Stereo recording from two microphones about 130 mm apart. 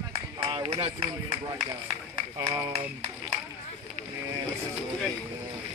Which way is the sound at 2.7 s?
55° right (ahead or behind).